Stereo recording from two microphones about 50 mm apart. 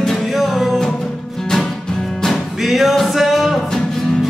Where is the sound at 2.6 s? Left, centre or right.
Centre.